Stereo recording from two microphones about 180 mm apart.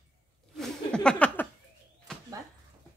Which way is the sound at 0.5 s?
5° left (ahead or behind).